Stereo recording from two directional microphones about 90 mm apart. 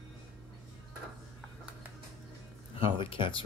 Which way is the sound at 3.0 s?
70° left (ahead or behind).